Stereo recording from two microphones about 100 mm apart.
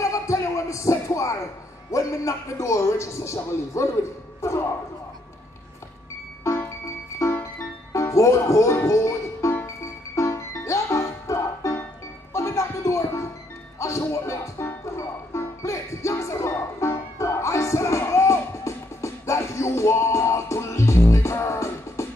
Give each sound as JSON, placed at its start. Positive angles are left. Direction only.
{"t": 0.0, "sound": "a sound", "side_deg": 35}
{"t": 1.9, "sound": "a man's voice", "side_deg": 30}
{"t": 6.4, "sound": "music", "side_deg": 30}